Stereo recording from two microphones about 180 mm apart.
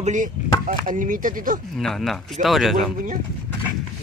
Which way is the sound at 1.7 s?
Centre (ahead or behind).